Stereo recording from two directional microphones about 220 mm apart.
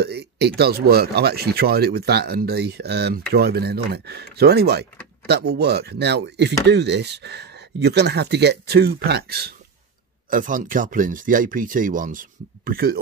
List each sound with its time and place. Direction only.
0.0 s speech: 45° right (ahead or behind)